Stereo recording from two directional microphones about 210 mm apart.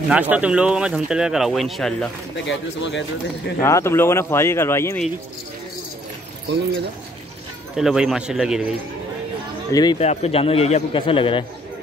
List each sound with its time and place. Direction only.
0.1 s speech: 5° right (ahead or behind)
2.4 s speech: 60° left (ahead or behind)
3.6 s speech: 15° left (ahead or behind)
7.7 s speech: centre (ahead or behind)
9.7 s speech: 20° left (ahead or behind)
9.9 s a man's voice: 30° left (ahead or behind)